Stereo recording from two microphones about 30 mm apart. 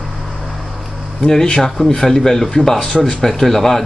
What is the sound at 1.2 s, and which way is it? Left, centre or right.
Speech, centre.